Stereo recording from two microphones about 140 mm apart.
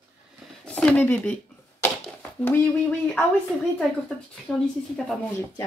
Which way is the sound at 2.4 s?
15° left (ahead or behind).